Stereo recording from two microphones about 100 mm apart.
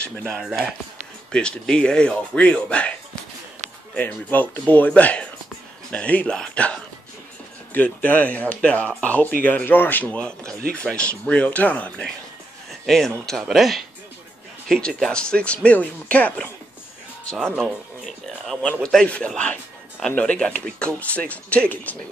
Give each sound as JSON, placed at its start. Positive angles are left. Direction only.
{"t": 1.3, "sound": "speech", "side_deg": 10}
{"t": 3.9, "sound": "speech", "side_deg": 20}
{"t": 12.8, "sound": "speech", "side_deg": 5}